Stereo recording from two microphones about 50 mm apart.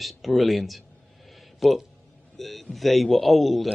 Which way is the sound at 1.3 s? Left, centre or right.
Centre.